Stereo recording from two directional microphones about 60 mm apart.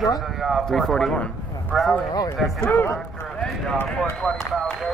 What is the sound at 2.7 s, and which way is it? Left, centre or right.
Speech, left.